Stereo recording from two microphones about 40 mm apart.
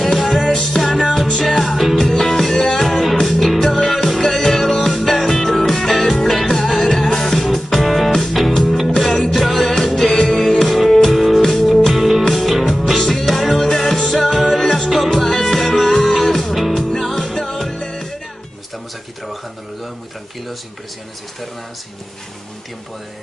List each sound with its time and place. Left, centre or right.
0.7 s music: centre
10.1 s music: centre
10.4 s music: centre